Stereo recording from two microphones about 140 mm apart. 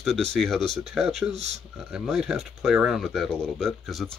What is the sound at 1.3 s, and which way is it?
Speech, 50° right (ahead or behind).